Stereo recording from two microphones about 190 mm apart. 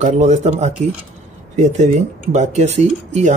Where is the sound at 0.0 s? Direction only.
35° right (ahead or behind).